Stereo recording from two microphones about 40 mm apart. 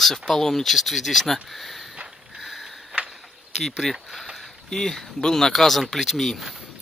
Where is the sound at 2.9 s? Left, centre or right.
Right.